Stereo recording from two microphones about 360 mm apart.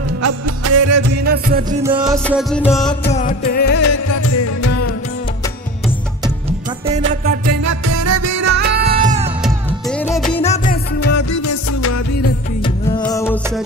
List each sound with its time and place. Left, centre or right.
0.2 s music: right
1.2 s music: right
1.8 s music: centre
3.1 s music: centre
3.7 s music: left
7.1 s music: right
8.5 s music: right
9.4 s music: centre
10.3 s music: centre
11.0 s music: left
12.6 s music: centre